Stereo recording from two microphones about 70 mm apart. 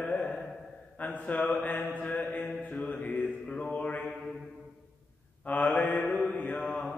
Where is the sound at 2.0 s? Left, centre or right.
Left.